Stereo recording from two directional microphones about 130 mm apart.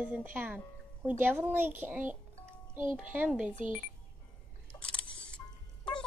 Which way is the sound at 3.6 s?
80° right.